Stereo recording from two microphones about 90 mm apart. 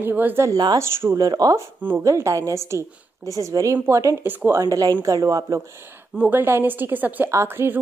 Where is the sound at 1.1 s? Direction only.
45° right (ahead or behind).